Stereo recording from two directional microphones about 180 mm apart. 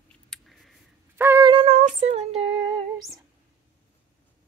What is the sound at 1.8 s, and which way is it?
Child singing, 40° right (ahead or behind).